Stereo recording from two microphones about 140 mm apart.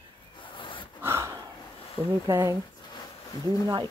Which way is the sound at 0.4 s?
35° left (ahead or behind).